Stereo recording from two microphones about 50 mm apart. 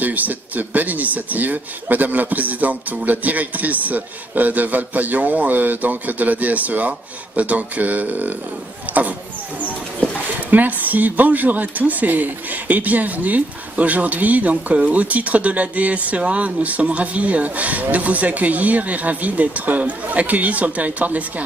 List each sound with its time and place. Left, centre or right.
0.0 s a woman's voice: right
10.5 s a woman's voice: right